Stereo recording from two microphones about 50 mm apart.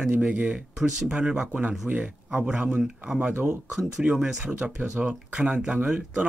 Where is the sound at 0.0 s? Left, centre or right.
Right.